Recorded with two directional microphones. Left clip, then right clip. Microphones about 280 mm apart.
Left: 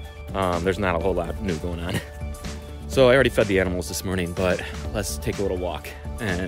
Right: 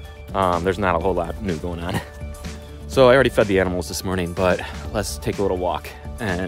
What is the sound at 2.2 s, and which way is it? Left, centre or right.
Music, centre.